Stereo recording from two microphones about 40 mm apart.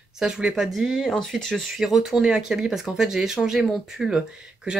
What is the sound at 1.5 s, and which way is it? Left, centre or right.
Speech, centre.